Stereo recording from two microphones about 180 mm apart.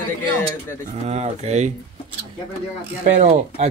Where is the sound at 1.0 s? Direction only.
35° right (ahead or behind).